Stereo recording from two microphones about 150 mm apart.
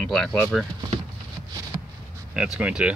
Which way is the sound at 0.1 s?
Centre (ahead or behind).